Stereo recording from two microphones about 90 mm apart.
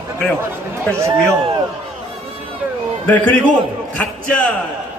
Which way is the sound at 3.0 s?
15° left (ahead or behind).